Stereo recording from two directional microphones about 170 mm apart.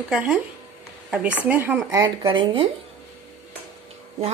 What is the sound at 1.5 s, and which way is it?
Speech, 10° right (ahead or behind).